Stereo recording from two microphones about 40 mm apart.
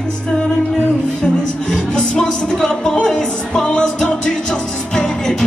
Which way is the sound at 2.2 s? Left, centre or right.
Centre.